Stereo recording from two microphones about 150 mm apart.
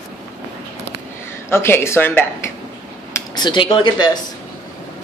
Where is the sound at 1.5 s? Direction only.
15° left (ahead or behind).